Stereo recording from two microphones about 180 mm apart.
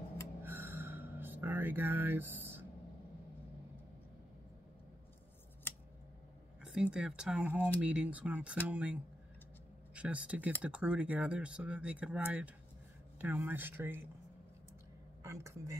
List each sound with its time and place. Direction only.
0.4 s a sound: 10° right (ahead or behind)
6.6 s speech: 5° right (ahead or behind)
15.2 s speech: 15° right (ahead or behind)